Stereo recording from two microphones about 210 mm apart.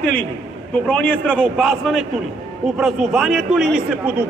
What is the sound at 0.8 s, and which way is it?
A man's voice, 5° left (ahead or behind).